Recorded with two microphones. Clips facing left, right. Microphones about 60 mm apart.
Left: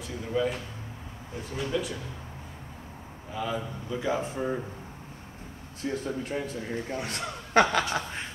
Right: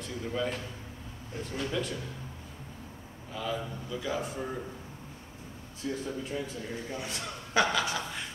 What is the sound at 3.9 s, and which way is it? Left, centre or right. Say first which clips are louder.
Speech: left 5 dB; left.